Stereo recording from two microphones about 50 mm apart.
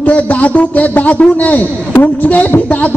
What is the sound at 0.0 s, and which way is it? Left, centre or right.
A man's voice, left.